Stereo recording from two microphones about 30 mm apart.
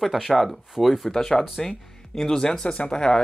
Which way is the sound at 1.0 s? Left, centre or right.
Centre.